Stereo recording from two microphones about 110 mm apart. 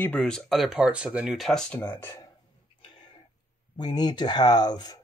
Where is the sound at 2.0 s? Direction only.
20° left (ahead or behind).